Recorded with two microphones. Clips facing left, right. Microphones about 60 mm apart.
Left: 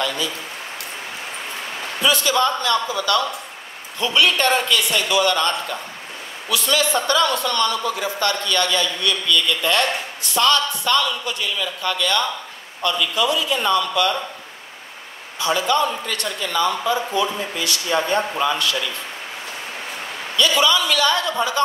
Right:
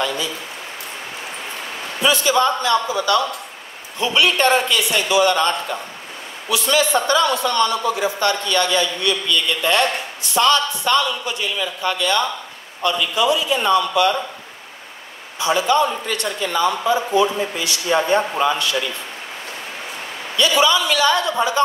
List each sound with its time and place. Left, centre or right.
2.0 s a man's voice: right
6.5 s a man's voice: right
15.3 s a man's voice: right
20.3 s a man's voice: right